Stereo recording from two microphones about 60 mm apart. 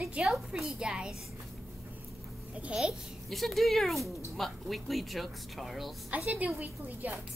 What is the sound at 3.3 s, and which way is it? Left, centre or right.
Speech, centre.